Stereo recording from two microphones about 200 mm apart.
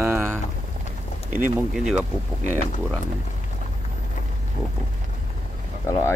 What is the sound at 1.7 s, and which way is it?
Speech, centre (ahead or behind).